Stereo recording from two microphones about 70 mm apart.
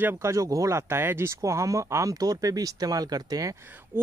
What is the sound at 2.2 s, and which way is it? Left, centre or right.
Speech, right.